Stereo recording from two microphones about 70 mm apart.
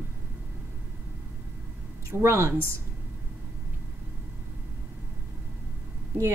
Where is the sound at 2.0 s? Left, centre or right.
Right.